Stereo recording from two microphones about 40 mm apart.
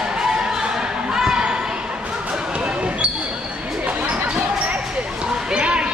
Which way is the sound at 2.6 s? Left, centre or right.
Right.